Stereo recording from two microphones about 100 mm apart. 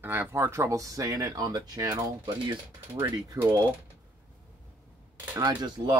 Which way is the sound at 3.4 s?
35° right (ahead or behind).